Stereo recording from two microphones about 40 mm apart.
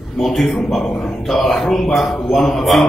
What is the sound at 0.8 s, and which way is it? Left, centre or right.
Speech, left.